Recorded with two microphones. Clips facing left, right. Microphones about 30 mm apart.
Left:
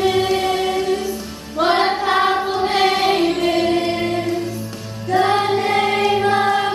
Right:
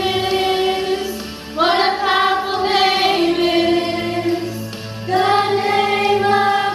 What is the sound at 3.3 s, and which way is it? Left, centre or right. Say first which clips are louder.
Music: right 2 dB; right.